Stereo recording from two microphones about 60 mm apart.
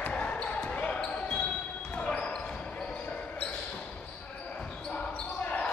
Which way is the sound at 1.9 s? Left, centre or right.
Left.